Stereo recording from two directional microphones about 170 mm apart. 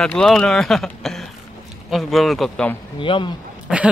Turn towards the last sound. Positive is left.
turn(degrees=-5)  # may be behind; listen again after turning